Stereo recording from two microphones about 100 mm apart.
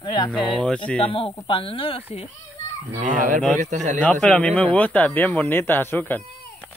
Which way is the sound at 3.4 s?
5° left (ahead or behind).